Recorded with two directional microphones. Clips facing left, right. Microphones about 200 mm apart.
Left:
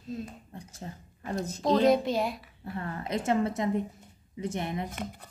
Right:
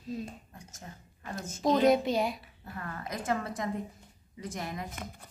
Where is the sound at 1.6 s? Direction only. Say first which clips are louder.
Left 1 dB; centre (ahead or behind).